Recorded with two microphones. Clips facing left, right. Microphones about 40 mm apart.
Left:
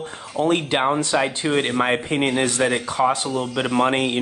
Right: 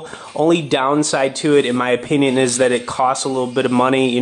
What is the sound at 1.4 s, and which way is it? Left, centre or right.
Speech, centre.